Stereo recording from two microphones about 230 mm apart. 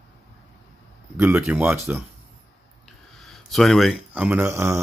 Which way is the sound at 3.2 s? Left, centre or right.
Centre.